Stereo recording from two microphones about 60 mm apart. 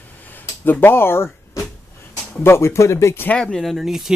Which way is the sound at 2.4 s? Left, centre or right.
Left.